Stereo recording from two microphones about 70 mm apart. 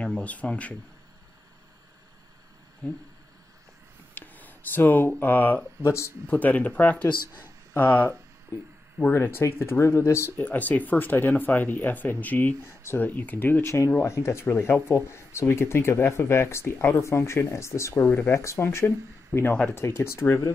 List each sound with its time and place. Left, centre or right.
0.0 s speech: centre
2.8 s speech: centre
4.1 s speech: left
5.8 s speech: left
6.2 s speech: left
9.4 s speech: left
12.6 s speech: left
13.0 s speech: left
14.0 s speech: left